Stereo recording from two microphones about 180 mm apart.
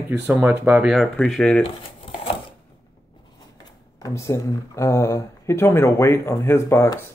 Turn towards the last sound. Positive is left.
turn(degrees=15)  # may be behind; listen again after turning